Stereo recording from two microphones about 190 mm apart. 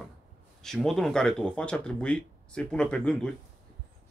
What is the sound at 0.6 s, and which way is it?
Speech, 5° left (ahead or behind).